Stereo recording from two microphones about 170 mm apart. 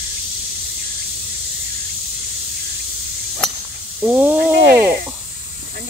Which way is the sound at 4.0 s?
10° right (ahead or behind).